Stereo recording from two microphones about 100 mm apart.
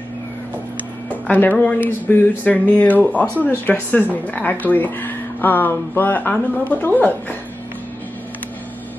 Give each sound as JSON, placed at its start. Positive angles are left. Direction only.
{"t": 1.2, "sound": "speech", "side_deg": 15}